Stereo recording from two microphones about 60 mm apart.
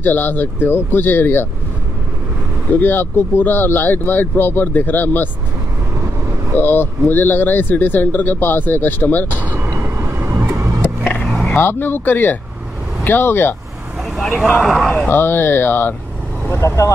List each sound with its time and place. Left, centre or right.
0.0 s speech: left
2.8 s speech: left
6.6 s speech: left
9.4 s vehicle: right
9.7 s vehicle: right
11.5 s speech: left
14.1 s vehicle: centre
14.6 s speech: centre
15.0 s speech: left
16.4 s speech: left